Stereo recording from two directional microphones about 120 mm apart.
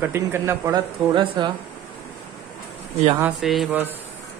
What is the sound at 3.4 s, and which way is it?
Speech, centre (ahead or behind).